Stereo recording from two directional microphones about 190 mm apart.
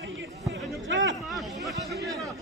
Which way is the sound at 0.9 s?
75° right (ahead or behind).